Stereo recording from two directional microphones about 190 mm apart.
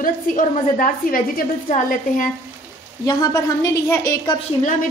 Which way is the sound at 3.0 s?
20° left (ahead or behind).